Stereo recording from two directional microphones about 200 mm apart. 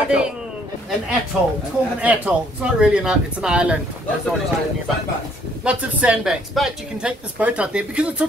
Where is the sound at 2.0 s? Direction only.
5° right (ahead or behind).